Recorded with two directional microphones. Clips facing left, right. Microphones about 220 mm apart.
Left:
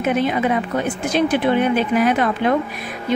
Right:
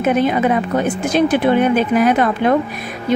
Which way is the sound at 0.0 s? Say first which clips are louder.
Right 3 dB; 45° right (ahead or behind).